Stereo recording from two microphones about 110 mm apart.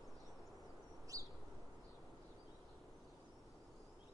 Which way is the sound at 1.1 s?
30° right (ahead or behind).